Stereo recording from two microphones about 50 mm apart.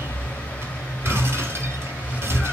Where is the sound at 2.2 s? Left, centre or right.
Right.